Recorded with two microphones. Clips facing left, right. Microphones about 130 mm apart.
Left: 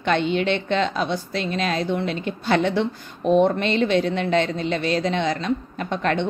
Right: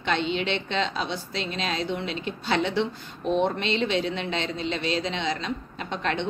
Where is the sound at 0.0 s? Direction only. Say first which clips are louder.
Left 5 dB; 50° left (ahead or behind).